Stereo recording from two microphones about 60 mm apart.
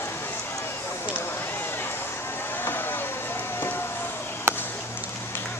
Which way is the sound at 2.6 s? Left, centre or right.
Left.